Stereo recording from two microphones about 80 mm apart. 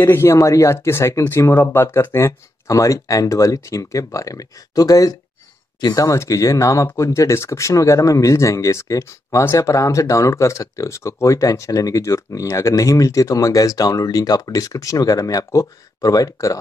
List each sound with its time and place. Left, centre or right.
0.0 s speech: left
12.7 s speech: left